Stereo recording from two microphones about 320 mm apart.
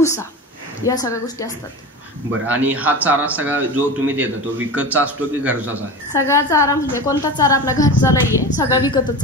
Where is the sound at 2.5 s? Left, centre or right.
Centre.